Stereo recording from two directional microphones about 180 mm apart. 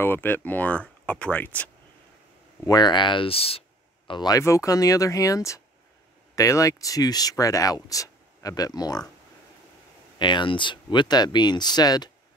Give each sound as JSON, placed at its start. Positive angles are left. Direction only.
{"t": 0.0, "sound": "speech", "side_deg": 10}
{"t": 2.6, "sound": "speech", "side_deg": 25}
{"t": 4.1, "sound": "speech", "side_deg": 20}
{"t": 10.1, "sound": "speech", "side_deg": 25}